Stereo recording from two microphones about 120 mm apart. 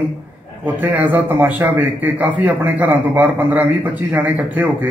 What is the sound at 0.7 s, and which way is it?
A man's voice, 15° right (ahead or behind).